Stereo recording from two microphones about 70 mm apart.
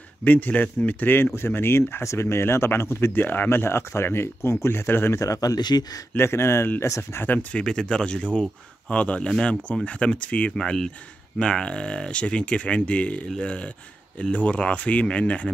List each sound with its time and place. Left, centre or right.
0.2 s speech: left
5.2 s speech: left
5.6 s speech: left
6.1 s speech: left
7.3 s speech: centre